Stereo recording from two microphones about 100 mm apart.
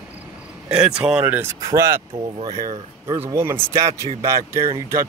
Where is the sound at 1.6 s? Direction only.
30° right (ahead or behind).